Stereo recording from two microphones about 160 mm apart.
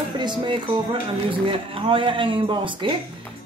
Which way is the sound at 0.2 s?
30° right (ahead or behind).